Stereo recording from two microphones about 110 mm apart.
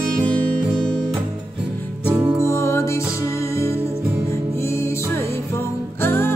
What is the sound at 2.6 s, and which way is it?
Music, 25° left (ahead or behind).